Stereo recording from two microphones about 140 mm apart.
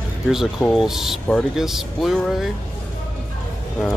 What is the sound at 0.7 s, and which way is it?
Speech, centre (ahead or behind).